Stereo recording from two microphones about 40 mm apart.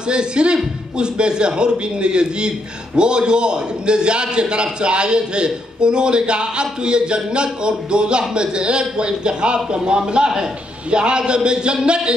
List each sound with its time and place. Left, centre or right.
0.1 s a man's voice: right